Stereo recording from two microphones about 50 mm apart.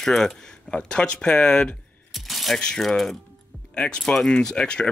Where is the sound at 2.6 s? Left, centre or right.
Centre.